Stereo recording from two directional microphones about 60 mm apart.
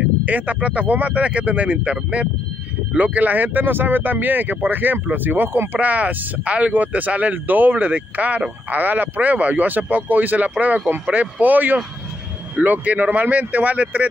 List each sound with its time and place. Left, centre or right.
0.2 s speech: right